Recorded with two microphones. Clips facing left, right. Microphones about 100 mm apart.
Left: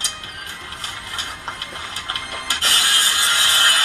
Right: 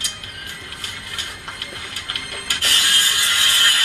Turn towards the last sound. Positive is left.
turn(degrees=25)  # may be behind; listen again after turning